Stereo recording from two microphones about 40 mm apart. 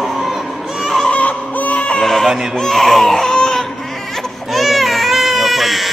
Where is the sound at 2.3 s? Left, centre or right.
Centre.